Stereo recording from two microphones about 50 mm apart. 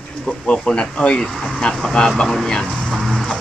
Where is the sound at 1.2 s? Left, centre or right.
Centre.